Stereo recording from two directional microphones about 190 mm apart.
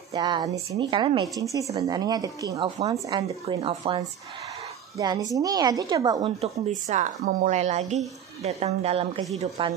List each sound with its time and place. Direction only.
0.1 s a woman's voice: 20° right (ahead or behind)
6.4 s a woman's voice: 40° right (ahead or behind)